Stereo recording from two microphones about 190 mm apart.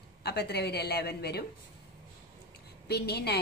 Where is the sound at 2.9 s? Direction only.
60° left (ahead or behind).